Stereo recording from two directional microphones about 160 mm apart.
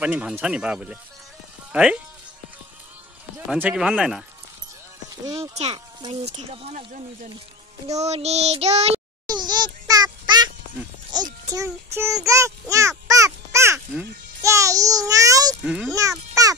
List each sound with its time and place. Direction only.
0.0 s speech: 5° right (ahead or behind)
3.4 s speech: 5° right (ahead or behind)
5.3 s child singing: 40° right (ahead or behind)
9.3 s a sound: 25° right (ahead or behind)
11.5 s speech: 15° right (ahead or behind)
12.3 s a sound: 20° right (ahead or behind)
15.6 s speech: 5° right (ahead or behind)
15.9 s babbling: 20° right (ahead or behind)